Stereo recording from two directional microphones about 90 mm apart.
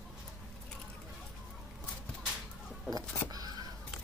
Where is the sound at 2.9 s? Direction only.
45° right (ahead or behind).